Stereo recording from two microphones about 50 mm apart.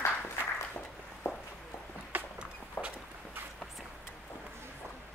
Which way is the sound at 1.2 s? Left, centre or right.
Left.